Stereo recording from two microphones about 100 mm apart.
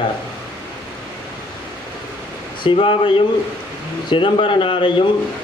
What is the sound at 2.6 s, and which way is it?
Speech, 55° left (ahead or behind).